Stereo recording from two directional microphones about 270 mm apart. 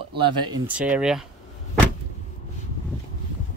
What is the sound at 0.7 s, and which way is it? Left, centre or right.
Speech, centre.